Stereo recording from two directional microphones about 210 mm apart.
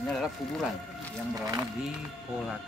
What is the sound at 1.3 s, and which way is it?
Speech, 15° right (ahead or behind).